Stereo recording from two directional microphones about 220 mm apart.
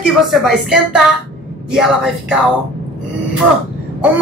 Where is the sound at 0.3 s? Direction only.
Centre (ahead or behind).